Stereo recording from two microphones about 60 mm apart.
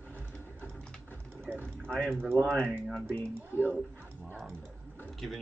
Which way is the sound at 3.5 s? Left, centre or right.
Left.